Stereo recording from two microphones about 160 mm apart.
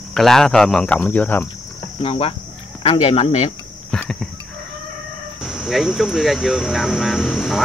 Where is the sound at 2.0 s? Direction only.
35° left (ahead or behind).